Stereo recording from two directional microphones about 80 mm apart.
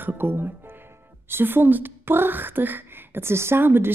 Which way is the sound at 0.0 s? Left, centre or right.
Right.